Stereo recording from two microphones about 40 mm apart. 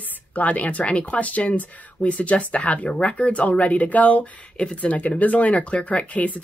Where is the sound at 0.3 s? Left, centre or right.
Left.